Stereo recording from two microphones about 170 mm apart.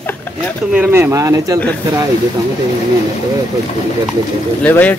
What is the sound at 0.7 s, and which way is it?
Speech, 15° right (ahead or behind).